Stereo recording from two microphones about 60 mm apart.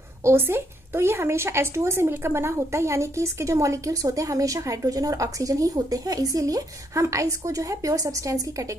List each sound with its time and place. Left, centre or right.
0.2 s a woman's voice: right